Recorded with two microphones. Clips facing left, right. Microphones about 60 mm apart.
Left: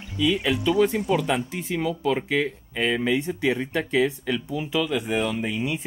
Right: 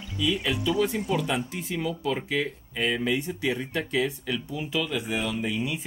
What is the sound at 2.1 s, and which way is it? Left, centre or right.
Speech, centre.